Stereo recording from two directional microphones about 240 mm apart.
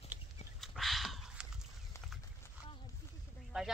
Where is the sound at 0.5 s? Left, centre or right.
Centre.